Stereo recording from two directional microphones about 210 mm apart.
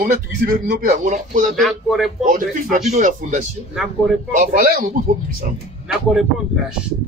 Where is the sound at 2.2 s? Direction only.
40° right (ahead or behind).